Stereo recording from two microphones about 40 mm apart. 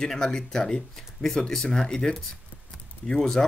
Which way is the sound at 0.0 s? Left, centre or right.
Centre.